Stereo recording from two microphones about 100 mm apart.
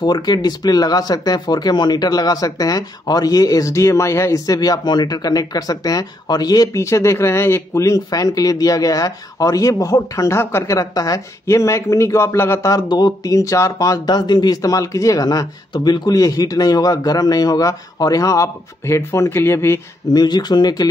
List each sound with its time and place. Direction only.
0.0 s speech: 45° left (ahead or behind); by 10.8 s 25° left (ahead or behind)
10.8 s speech: 40° left (ahead or behind)
20.2 s speech: 45° left (ahead or behind)